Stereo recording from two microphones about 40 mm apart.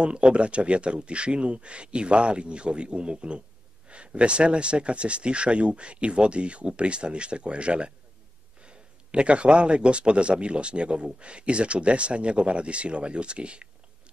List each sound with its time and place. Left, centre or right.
0.0 s speech: right